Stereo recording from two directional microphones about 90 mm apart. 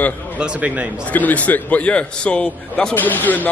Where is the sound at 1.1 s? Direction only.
15° left (ahead or behind).